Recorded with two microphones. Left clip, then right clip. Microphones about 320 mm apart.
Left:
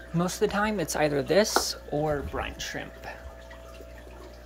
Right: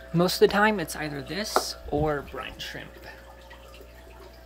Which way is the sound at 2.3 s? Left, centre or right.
Centre.